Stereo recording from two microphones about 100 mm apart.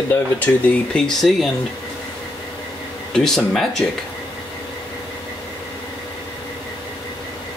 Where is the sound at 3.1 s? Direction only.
5° left (ahead or behind).